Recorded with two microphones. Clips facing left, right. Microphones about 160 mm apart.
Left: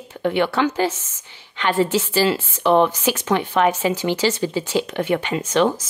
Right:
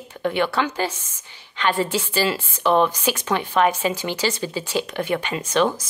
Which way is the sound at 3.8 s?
10° left (ahead or behind).